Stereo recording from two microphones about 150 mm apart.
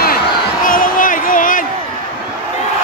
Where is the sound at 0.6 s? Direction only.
65° left (ahead or behind).